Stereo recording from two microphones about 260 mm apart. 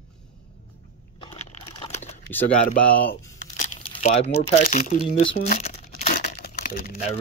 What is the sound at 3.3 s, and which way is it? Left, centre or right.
Crumpling, left.